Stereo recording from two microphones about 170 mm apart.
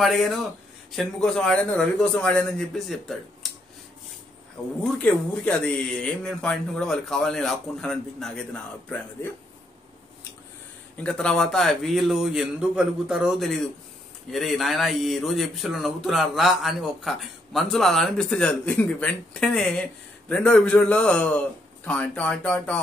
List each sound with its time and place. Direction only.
0.0 s speech: centre (ahead or behind)
4.8 s speech: 5° left (ahead or behind)
11.0 s speech: 5° left (ahead or behind)